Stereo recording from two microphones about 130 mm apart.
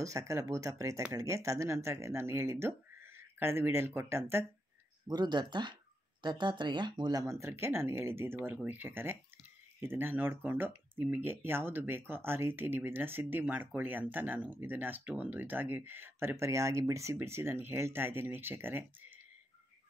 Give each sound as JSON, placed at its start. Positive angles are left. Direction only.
{"t": 0.0, "sound": "speech", "side_deg": -25}
{"t": 5.0, "sound": "speech", "side_deg": -35}